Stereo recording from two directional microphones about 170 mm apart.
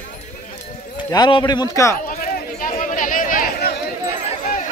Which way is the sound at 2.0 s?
55° left (ahead or behind).